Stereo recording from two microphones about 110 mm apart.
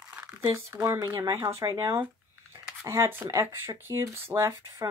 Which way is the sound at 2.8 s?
25° right (ahead or behind).